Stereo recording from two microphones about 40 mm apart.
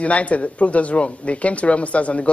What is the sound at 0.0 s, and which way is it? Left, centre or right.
Speech, left.